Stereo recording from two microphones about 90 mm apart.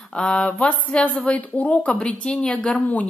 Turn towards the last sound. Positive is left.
turn(degrees=15)  # may be behind; listen again after turning